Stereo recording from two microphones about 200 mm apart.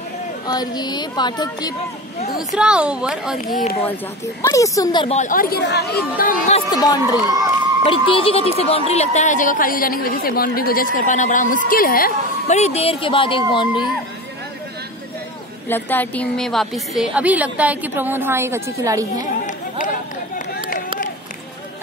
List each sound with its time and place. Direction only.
0.5 s speech: 20° left (ahead or behind)
2.5 s a woman's voice: 5° right (ahead or behind)
3.8 s speech: 10° left (ahead or behind)
5.0 s speech: 35° left (ahead or behind)
6.7 s speech: 20° left (ahead or behind)
15.7 s a woman's voice: 10° left (ahead or behind); by 19.0 s 15° right (ahead or behind)
19.1 s run: 40° left (ahead or behind)